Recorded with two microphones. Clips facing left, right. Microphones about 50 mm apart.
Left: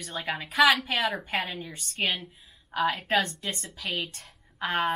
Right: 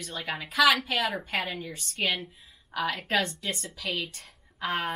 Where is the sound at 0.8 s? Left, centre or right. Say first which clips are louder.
Left 1 dB; left.